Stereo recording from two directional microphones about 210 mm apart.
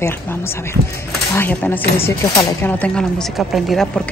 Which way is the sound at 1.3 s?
10° left (ahead or behind).